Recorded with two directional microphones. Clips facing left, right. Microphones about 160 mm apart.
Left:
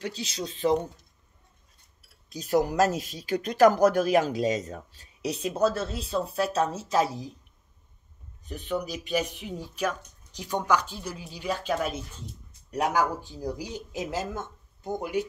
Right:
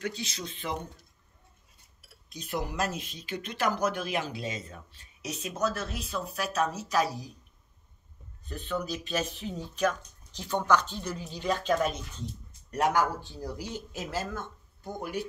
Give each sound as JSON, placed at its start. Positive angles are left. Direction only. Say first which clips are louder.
{"t": 0.0, "sound": "speech", "louder": "left 2 dB", "side_deg": 35}
{"t": 2.2, "sound": "speech", "louder": "left 10 dB", "side_deg": 40}
{"t": 8.5, "sound": "speech", "louder": "left 2 dB", "side_deg": 15}